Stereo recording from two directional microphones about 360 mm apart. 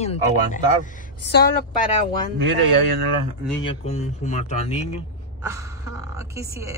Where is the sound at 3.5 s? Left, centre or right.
Centre.